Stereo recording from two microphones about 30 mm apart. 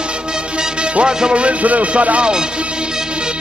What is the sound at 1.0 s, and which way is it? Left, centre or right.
Music, right.